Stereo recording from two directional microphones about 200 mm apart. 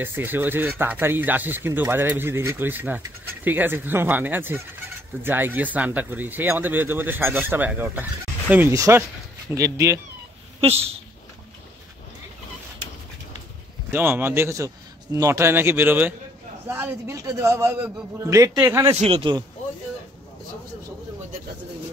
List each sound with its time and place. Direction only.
0.0 s speech: 10° right (ahead or behind)
10.6 s a man's voice: 30° right (ahead or behind)
13.9 s speech: 10° right (ahead or behind)
18.9 s a man's voice: 30° right (ahead or behind)